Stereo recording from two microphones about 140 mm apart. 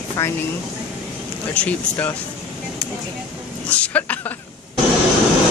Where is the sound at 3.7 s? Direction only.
10° left (ahead or behind).